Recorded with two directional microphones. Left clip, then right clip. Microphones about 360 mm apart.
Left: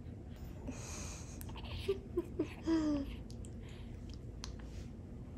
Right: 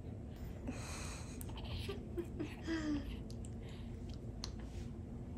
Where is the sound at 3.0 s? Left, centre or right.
Centre.